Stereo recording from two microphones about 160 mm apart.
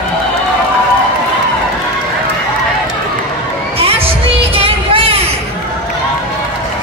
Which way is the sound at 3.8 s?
35° right (ahead or behind).